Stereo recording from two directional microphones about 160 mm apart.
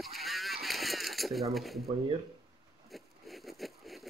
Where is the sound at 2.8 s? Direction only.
Centre (ahead or behind).